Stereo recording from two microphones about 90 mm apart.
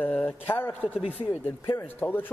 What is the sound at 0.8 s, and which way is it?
Speech, 15° right (ahead or behind).